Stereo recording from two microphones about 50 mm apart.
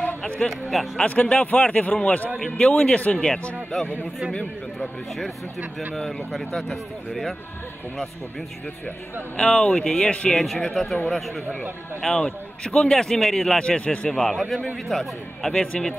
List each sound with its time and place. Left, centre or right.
0.5 s speech: centre
1.0 s speech: left
4.3 s a man's voice: centre
5.9 s a man's voice: centre
9.4 s a man's voice: centre
10.3 s a man's voice: centre
13.6 s a man's voice: left